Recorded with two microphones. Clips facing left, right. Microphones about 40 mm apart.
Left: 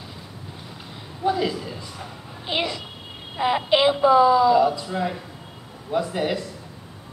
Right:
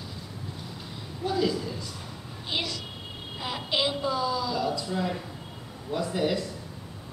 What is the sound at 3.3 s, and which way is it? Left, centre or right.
A woman's voice, left.